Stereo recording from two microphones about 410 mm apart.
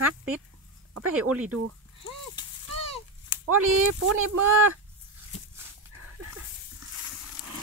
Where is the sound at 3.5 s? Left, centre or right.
Right.